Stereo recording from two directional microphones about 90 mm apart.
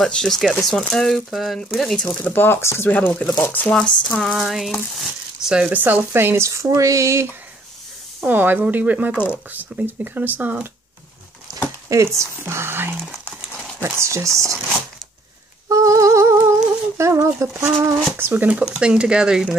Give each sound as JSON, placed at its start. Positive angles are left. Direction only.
{"t": 0.0, "sound": "speech", "side_deg": 5}
{"t": 2.0, "sound": "speech", "side_deg": 20}
{"t": 2.9, "sound": "speech", "side_deg": 15}
{"t": 5.7, "sound": "speech", "side_deg": -20}
{"t": 8.3, "sound": "speech", "side_deg": -20}
{"t": 11.9, "sound": "speech", "side_deg": -35}
{"t": 15.7, "sound": "humming", "side_deg": -40}
{"t": 17.7, "sound": "speech", "side_deg": -25}